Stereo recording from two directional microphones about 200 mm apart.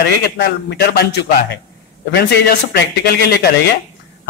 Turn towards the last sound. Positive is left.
turn(degrees=55)  # may be behind; listen again after turning